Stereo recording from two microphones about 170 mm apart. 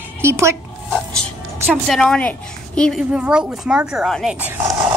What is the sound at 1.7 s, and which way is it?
Speech, 5° left (ahead or behind).